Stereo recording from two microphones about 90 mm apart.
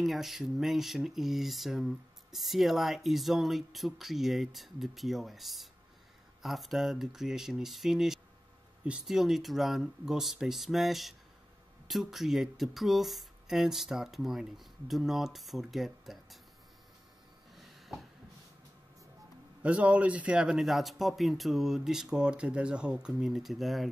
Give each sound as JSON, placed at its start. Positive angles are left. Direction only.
{"t": 0.0, "sound": "speech", "side_deg": 0}
{"t": 17.6, "sound": "a sound", "side_deg": 0}
{"t": 19.6, "sound": "speech", "side_deg": -15}